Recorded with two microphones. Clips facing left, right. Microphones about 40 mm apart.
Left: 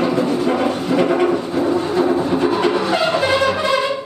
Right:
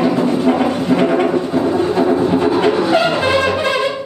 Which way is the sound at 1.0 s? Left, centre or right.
Right.